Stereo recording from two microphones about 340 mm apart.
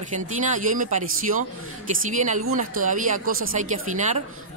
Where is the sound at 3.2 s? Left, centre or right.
Right.